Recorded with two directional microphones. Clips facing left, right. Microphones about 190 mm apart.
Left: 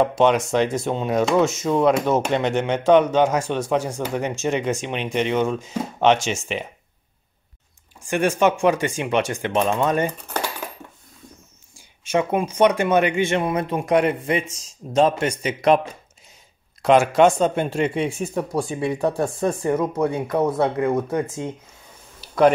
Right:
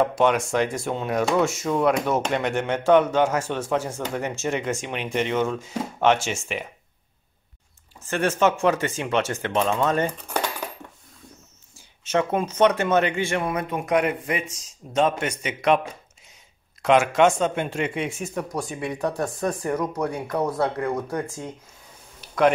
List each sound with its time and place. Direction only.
0.0 s speech: 20° left (ahead or behind)
8.0 s speech: 15° left (ahead or behind)
11.7 s speech: 10° left (ahead or behind); by 15.8 s 35° left (ahead or behind)
16.8 s speech: 35° left (ahead or behind)
22.2 s a sound: 30° left (ahead or behind)